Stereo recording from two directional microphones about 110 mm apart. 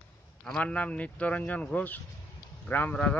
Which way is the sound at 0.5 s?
15° left (ahead or behind).